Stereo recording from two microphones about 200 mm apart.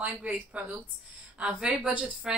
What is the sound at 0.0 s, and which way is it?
A woman's voice, 5° right (ahead or behind).